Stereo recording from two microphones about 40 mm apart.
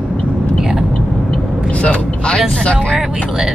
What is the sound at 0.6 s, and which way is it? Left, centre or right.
Vehicle, centre.